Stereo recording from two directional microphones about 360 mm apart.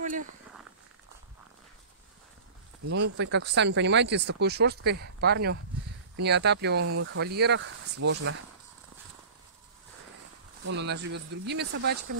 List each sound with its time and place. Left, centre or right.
2.9 s speech: right
10.6 s speech: right